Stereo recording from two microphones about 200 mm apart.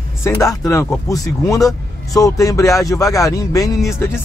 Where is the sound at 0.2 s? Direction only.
15° left (ahead or behind).